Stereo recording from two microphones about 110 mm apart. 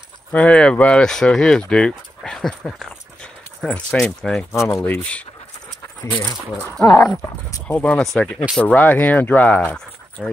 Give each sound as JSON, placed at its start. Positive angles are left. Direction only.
{"t": 0.3, "sound": "speech", "side_deg": 10}
{"t": 4.5, "sound": "speech", "side_deg": 25}
{"t": 4.8, "sound": "speech", "side_deg": 15}
{"t": 6.8, "sound": "speech", "side_deg": 30}
{"t": 7.6, "sound": "speech", "side_deg": 10}